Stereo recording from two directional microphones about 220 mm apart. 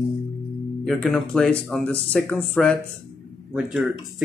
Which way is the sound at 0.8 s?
Centre (ahead or behind).